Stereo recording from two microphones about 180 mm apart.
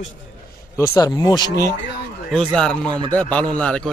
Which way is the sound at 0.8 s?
20° left (ahead or behind).